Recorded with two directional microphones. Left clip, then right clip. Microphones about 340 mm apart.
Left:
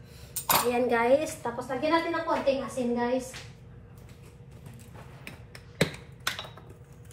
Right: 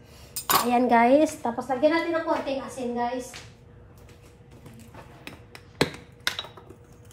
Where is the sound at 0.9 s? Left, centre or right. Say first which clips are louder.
Right 6 dB; right.